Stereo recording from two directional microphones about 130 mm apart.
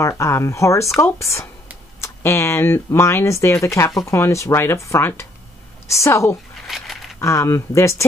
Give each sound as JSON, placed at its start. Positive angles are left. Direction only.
{"t": 0.0, "sound": "speech", "side_deg": 20}
{"t": 6.5, "sound": "a sound", "side_deg": 0}
{"t": 7.2, "sound": "speech", "side_deg": 20}